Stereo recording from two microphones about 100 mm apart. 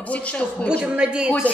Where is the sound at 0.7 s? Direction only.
10° right (ahead or behind).